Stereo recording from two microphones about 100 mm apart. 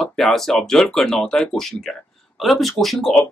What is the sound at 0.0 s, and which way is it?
Speech, centre (ahead or behind).